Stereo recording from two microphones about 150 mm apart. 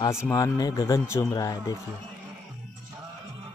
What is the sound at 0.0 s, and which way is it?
Speech, 20° left (ahead or behind).